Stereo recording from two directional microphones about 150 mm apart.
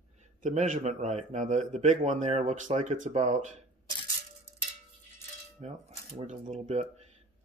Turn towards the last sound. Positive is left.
turn(degrees=-50)  # may be behind; listen again after turning